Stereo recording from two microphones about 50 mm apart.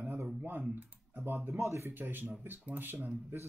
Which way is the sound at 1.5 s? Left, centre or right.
Right.